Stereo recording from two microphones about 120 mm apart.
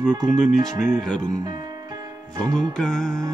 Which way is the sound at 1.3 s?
30° right (ahead or behind).